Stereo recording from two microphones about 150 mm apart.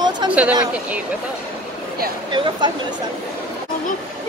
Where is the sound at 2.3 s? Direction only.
30° right (ahead or behind).